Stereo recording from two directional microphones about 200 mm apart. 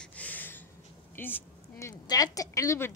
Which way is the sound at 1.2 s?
10° left (ahead or behind).